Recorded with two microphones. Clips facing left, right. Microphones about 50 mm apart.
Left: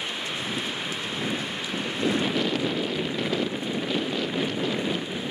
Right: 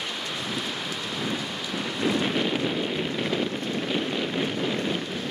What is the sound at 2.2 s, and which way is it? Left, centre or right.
Wind noise, centre.